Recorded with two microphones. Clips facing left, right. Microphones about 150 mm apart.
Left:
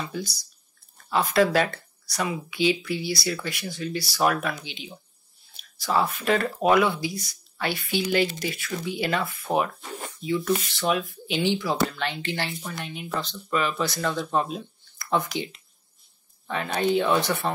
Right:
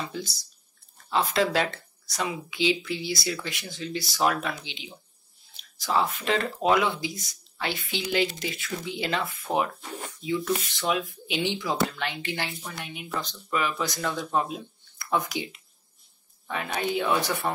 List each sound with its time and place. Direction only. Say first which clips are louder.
0.1 s speech: left 2 dB; 25° right (ahead or behind)
10.4 s speech: left 3 dB; 20° right (ahead or behind)
16.4 s speech: left 4 dB; 10° right (ahead or behind)